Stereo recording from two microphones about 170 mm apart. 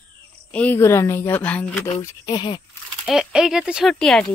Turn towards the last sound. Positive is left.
turn(degrees=5)  # may be behind; listen again after turning